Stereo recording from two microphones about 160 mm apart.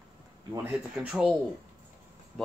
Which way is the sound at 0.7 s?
5° right (ahead or behind).